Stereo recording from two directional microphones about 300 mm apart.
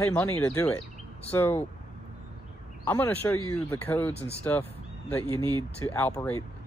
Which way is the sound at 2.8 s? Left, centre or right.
Centre.